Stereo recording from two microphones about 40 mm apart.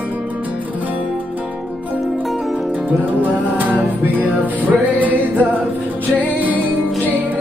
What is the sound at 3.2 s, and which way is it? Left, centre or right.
Music, right.